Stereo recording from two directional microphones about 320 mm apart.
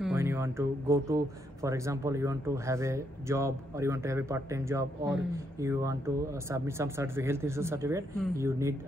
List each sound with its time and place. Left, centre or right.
0.0 s speech: centre